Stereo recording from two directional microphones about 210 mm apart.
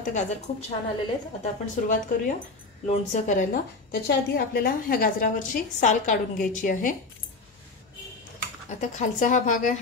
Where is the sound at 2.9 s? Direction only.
35° left (ahead or behind).